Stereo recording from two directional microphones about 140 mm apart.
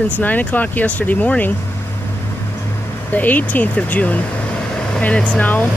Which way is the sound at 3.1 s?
10° left (ahead or behind).